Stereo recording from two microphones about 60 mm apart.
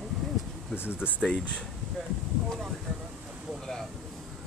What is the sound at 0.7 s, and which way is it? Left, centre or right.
Speech, left.